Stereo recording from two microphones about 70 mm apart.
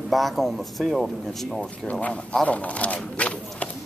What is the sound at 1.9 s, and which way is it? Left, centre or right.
Speech, centre.